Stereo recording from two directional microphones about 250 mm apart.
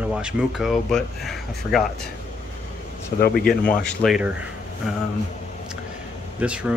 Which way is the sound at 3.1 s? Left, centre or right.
Left.